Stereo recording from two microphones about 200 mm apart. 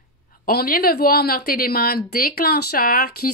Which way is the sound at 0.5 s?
50° left (ahead or behind).